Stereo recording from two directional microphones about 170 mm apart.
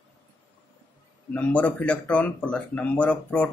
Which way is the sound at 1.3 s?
10° left (ahead or behind).